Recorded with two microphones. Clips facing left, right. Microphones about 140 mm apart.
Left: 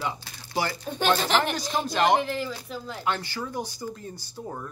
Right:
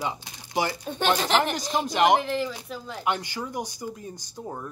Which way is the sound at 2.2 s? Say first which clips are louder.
Right 2 dB; 5° left (ahead or behind).